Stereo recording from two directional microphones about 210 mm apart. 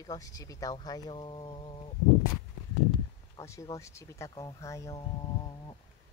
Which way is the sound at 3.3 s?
15° left (ahead or behind).